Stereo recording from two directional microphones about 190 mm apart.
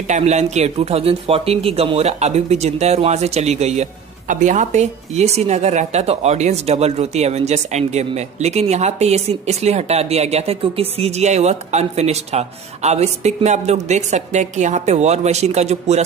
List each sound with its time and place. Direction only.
0.1 s speech: 35° right (ahead or behind)